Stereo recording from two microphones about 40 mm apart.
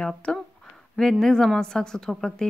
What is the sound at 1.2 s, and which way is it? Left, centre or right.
A woman's voice, centre.